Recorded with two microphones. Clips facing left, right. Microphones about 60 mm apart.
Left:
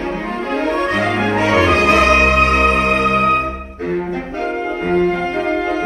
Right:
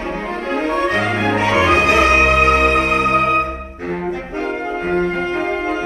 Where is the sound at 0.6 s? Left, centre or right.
Centre.